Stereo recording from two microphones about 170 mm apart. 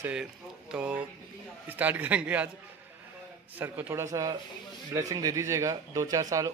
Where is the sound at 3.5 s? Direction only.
10° right (ahead or behind).